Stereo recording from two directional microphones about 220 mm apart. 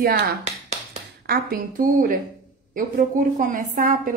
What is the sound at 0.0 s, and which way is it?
Speech, 35° right (ahead or behind).